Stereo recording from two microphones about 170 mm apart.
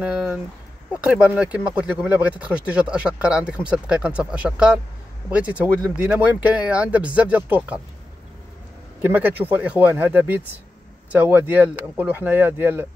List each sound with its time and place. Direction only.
0.0 s speech: 5° right (ahead or behind)
9.0 s speech: 10° right (ahead or behind)